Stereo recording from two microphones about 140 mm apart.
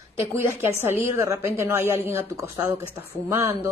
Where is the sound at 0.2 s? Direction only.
20° right (ahead or behind).